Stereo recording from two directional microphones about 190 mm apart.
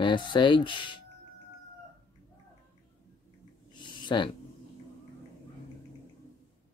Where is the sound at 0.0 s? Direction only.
25° left (ahead or behind).